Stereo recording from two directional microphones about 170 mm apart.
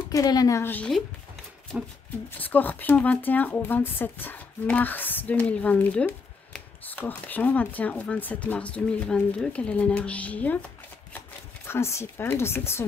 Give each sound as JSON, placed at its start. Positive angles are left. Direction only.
{"t": 0.1, "sound": "speech", "side_deg": 20}
{"t": 2.3, "sound": "speech", "side_deg": 10}